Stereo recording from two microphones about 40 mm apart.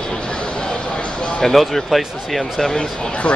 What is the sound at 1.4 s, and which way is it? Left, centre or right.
Speech, centre.